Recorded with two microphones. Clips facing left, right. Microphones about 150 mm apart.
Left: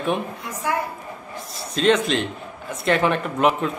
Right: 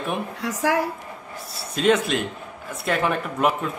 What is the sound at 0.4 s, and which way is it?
Speech, 90° right.